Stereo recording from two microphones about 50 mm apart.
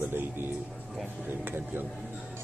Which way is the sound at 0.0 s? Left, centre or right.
Right.